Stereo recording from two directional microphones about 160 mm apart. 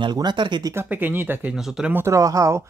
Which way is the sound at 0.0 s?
25° right (ahead or behind).